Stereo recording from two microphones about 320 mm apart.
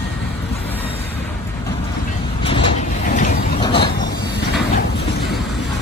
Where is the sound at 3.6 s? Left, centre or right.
Centre.